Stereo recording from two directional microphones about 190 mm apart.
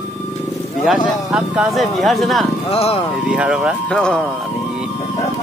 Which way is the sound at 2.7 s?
30° left (ahead or behind).